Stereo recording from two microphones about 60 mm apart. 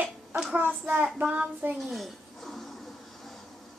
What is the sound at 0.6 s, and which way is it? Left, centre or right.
A child's voice, right.